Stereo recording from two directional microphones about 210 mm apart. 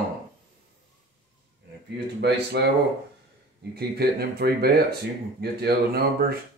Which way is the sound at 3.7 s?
50° right (ahead or behind).